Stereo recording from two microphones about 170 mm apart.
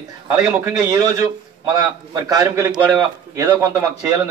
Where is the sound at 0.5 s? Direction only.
15° right (ahead or behind).